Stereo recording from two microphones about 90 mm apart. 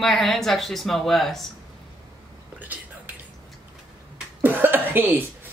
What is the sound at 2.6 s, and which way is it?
Cutlery, 20° right (ahead or behind).